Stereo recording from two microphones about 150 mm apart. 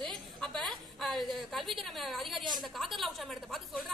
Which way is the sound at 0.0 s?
5° left (ahead or behind).